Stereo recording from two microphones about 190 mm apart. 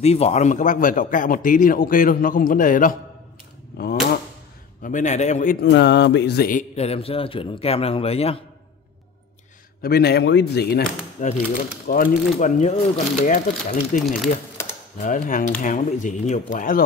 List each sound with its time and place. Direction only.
0.0 s speech: 35° left (ahead or behind)
4.8 s speech: 40° left (ahead or behind)
5.6 s music: 65° left (ahead or behind)
6.7 s speech: 35° left (ahead or behind)
9.8 s music: 55° left (ahead or behind)
11.2 s speech: 40° left (ahead or behind)
15.0 s speech: 45° left (ahead or behind)